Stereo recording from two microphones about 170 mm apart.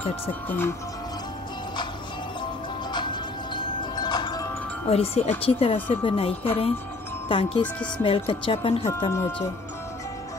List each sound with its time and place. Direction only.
0.5 s speech: 15° left (ahead or behind)
2.9 s music: 25° left (ahead or behind)
4.8 s a woman's voice: 35° left (ahead or behind)